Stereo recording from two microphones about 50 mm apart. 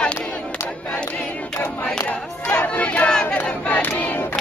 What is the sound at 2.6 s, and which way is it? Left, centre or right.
Crowd, left.